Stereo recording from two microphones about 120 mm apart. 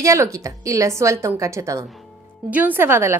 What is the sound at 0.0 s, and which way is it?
A woman's voice, 25° right (ahead or behind).